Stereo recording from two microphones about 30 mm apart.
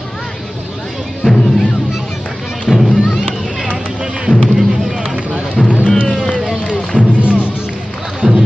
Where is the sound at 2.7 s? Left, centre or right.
Centre.